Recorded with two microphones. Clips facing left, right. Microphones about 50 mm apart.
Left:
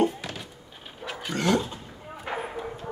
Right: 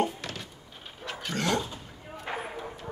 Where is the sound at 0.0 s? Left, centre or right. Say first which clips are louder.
Left 4 dB; centre.